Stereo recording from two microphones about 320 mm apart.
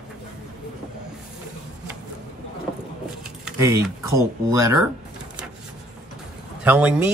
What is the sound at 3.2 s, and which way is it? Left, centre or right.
Speech, centre.